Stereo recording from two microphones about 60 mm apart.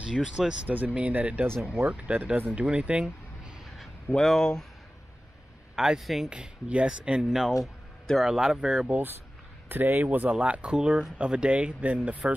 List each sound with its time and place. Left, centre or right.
0.0 s speech: centre
0.7 s speech: right
2.5 s a sound: centre
4.2 s speech: centre
5.8 s speech: centre
6.3 s speech: centre
9.7 s speech: right
10.3 s speech: centre